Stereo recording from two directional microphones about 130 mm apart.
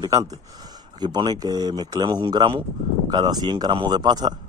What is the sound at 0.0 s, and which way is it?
Speech, 30° right (ahead or behind).